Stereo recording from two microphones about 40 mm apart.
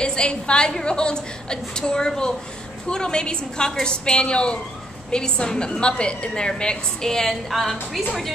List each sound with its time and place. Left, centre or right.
0.0 s a woman's voice: left
7.4 s a woman's voice: centre